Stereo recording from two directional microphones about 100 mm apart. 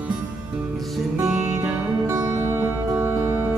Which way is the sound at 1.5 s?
25° right (ahead or behind).